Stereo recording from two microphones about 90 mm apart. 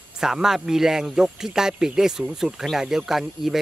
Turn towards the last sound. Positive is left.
turn(degrees=-5)  # may be behind; listen again after turning